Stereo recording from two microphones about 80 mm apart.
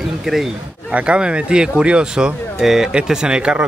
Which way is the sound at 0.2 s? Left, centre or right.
Centre.